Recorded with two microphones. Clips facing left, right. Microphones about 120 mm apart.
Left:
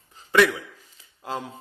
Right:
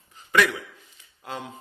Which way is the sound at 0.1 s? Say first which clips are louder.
Left 3 dB; 30° left (ahead or behind).